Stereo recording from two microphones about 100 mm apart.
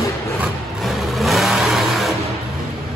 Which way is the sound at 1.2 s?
Centre (ahead or behind).